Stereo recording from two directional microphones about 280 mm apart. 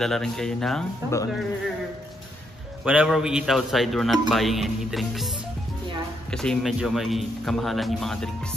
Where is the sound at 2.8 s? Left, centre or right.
Centre.